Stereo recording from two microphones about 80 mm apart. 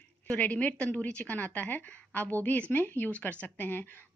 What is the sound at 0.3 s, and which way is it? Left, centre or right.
A woman's voice, centre.